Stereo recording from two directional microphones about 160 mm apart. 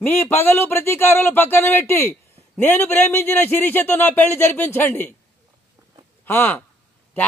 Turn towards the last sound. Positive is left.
turn(degrees=15)  # may be behind; listen again after turning